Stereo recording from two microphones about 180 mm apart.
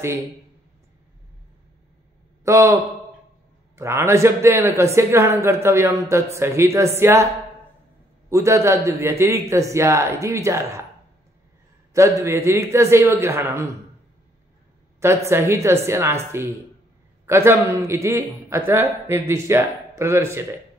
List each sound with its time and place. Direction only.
2.4 s a man's voice: 15° right (ahead or behind)
8.3 s a man's voice: 15° right (ahead or behind)
11.9 s a man's voice: 15° right (ahead or behind)
15.0 s a man's voice: 15° right (ahead or behind)